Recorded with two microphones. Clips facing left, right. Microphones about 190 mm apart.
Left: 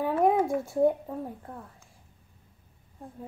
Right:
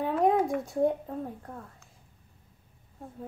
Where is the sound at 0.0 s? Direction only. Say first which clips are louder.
Left 1 dB; 5° left (ahead or behind).